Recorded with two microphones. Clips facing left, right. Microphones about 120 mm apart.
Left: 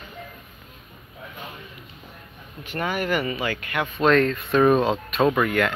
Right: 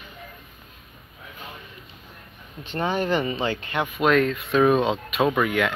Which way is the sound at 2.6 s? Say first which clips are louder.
Right 1 dB; 25° right (ahead or behind).